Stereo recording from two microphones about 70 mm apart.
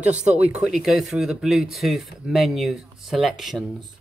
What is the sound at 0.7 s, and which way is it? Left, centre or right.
Speech, centre.